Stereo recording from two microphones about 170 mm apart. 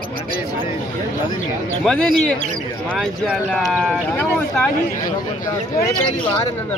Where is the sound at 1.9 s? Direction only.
5° left (ahead or behind).